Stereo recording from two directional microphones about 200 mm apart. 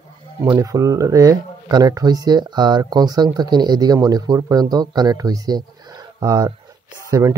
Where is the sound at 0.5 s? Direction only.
15° right (ahead or behind).